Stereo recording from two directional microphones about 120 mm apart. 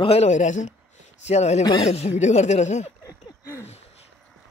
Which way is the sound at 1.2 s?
65° left (ahead or behind).